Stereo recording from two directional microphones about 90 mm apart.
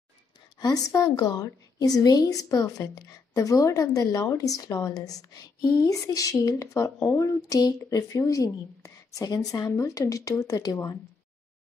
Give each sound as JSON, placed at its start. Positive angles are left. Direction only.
{"t": 0.6, "sound": "a woman's voice", "side_deg": 45}